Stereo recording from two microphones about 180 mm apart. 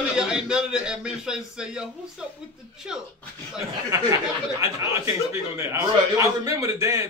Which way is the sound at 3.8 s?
15° right (ahead or behind).